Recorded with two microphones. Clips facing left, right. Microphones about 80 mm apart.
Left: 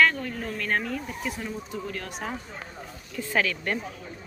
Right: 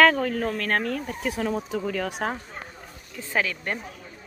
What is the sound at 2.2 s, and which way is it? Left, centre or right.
Speech, right.